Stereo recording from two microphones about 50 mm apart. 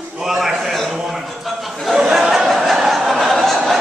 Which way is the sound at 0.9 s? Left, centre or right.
Centre.